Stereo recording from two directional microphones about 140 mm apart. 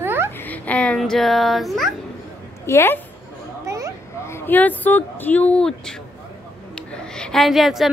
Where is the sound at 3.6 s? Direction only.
25° right (ahead or behind).